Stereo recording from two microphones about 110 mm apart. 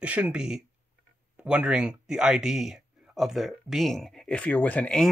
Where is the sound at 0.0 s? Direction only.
10° right (ahead or behind).